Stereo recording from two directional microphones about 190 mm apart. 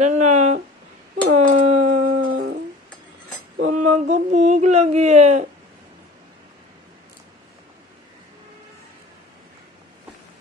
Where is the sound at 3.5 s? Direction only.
40° right (ahead or behind).